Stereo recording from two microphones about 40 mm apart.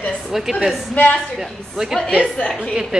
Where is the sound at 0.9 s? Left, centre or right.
Left.